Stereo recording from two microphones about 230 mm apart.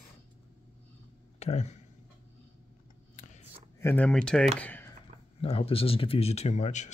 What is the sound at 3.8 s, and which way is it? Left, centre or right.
Speech, centre.